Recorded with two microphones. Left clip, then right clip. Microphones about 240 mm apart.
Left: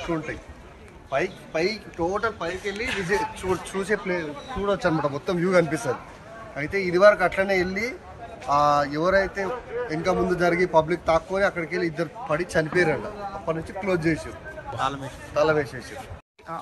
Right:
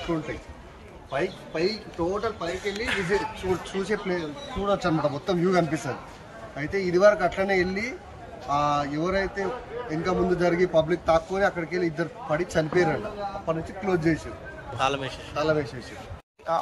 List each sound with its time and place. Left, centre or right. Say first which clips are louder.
1.1 s a man's voice: left 3 dB; centre
8.8 s speech: left 5 dB; centre
9.2 s a man's voice: left 2 dB; centre
14.8 s a man's voice: right 2 dB; right
15.3 s a man's voice: left 4 dB; centre